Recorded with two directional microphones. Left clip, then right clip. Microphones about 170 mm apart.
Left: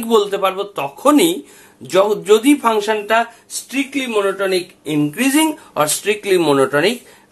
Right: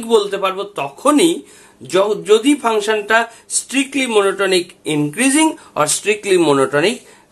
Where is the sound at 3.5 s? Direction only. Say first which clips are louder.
Right 3 dB; 30° right (ahead or behind).